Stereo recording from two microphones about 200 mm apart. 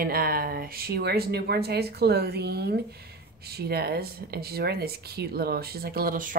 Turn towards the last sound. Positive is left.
turn(degrees=-45)  # may be behind; listen again after turning